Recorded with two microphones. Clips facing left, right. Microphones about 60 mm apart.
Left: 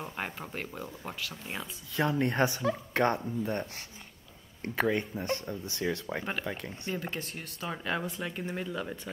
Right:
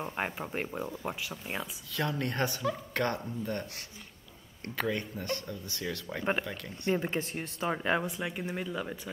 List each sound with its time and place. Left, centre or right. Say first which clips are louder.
0.0 s speech: right 3 dB; centre
2.0 s speech: left 4 dB; left
4.6 s speech: left 4 dB; left
6.9 s speech: right 6 dB; right
8.0 s speech: right 1 dB; centre